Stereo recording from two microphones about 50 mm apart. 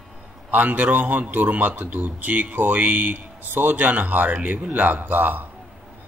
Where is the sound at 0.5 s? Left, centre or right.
Right.